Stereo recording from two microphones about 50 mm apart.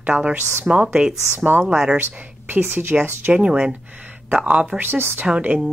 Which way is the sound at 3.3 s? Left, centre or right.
Right.